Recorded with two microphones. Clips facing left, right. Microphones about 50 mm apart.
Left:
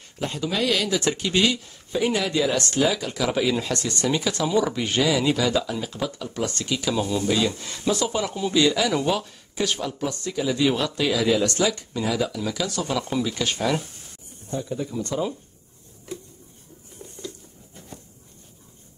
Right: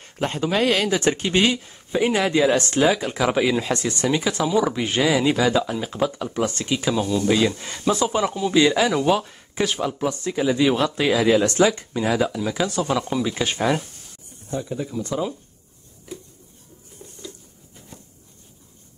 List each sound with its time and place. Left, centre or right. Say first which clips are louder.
0.0 s speech: right 4 dB; right
8.9 s speech: right 4 dB; centre
9.2 s a sound: right 3 dB; right
9.7 s speech: right 3 dB; right
12.4 s speech: right 4 dB; right
14.5 s speech: right 1 dB; centre
17.2 s patter: left 2 dB; left
17.8 s a sound: left 2 dB; centre